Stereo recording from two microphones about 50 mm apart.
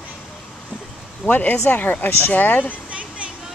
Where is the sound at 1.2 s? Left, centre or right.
Left.